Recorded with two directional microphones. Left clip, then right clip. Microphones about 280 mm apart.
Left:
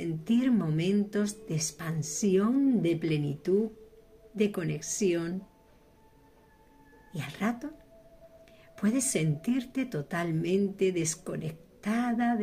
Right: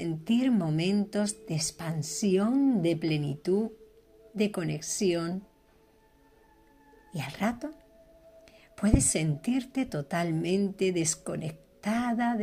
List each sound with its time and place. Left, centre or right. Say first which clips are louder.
0.0 s a woman's voice: right 1 dB; centre
7.2 s a woman's voice: right 2 dB; right